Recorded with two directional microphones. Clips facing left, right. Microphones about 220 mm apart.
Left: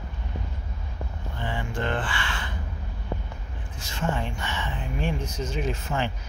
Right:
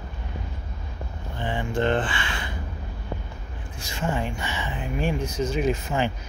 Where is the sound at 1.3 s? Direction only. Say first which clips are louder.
Right 5 dB; 20° right (ahead or behind).